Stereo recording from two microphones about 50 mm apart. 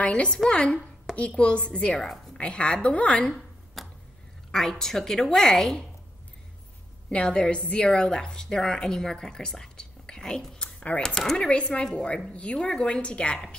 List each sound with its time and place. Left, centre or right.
0.1 s a woman's voice: centre
3.8 s a sound: centre
4.5 s a woman's voice: centre
7.1 s a woman's voice: left
10.6 s a sound: left
11.0 s a woman's voice: centre